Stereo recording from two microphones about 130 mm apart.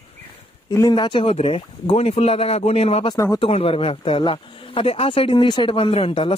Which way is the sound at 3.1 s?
30° left (ahead or behind).